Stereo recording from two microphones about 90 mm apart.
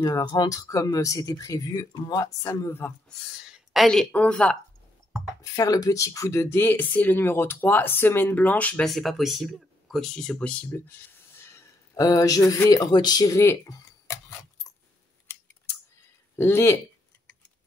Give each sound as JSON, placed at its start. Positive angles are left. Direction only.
{"t": 0.0, "sound": "speech", "side_deg": 50}
{"t": 0.7, "sound": "speech", "side_deg": 40}
{"t": 3.2, "sound": "a sound", "side_deg": -5}
{"t": 3.8, "sound": "a woman's voice", "side_deg": 5}
{"t": 5.4, "sound": "speech", "side_deg": 40}
{"t": 8.8, "sound": "speech", "side_deg": 0}
{"t": 11.3, "sound": "a sound", "side_deg": 30}
{"t": 12.0, "sound": "speech", "side_deg": 40}
{"t": 13.3, "sound": "tick-tock", "side_deg": 35}
{"t": 16.3, "sound": "speech", "side_deg": 25}